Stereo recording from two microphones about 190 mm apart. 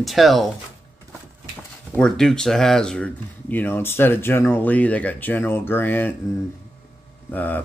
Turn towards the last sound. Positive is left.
turn(degrees=10)  # may be behind; listen again after turning